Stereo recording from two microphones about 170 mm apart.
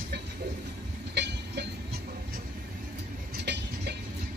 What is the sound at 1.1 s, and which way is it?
Train, 85° right.